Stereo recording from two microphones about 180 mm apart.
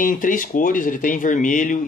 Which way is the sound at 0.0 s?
50° left (ahead or behind).